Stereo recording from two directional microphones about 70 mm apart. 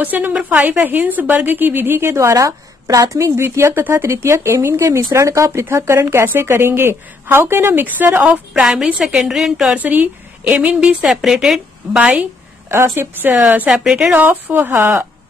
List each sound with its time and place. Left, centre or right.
0.0 s a woman's voice: right
2.3 s speech: right
8.6 s speech: centre
9.8 s a woman's voice: right
10.6 s a woman's voice: centre
12.0 s a woman's voice: centre
12.6 s speech: right
13.8 s a woman's voice: centre
14.1 s a woman's voice: right